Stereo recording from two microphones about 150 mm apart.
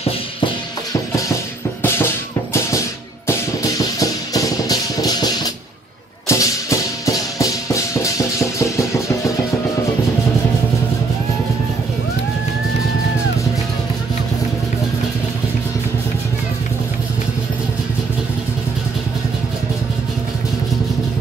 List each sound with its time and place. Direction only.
3.3 s music: 20° left (ahead or behind)